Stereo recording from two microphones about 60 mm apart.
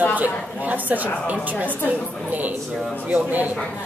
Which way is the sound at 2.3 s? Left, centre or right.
Right.